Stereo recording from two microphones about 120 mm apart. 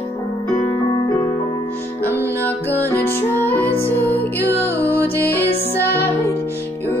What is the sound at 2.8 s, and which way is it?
Music, 15° left (ahead or behind).